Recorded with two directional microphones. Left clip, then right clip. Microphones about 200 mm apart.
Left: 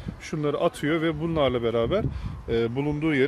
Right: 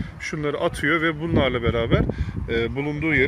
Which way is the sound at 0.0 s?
10° left (ahead or behind).